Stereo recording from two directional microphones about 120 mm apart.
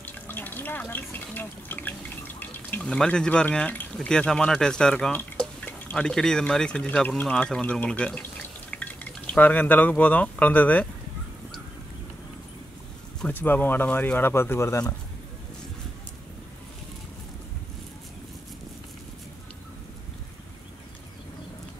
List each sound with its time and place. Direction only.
0.0 s speech: 15° left (ahead or behind)
13.3 s speech: 15° left (ahead or behind)